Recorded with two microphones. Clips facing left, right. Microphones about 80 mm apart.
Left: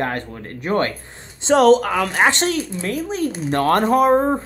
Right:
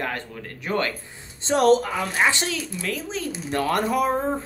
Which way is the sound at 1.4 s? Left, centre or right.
Left.